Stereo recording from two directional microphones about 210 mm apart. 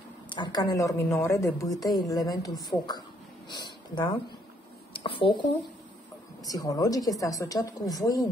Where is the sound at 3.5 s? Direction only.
20° left (ahead or behind).